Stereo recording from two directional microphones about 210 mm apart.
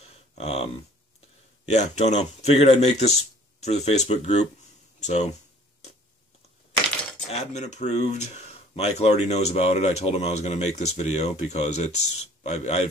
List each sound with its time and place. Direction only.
0.0 s a sound: 30° left (ahead or behind)
1.7 s speech: 35° left (ahead or behind)
7.2 s speech: 30° left (ahead or behind)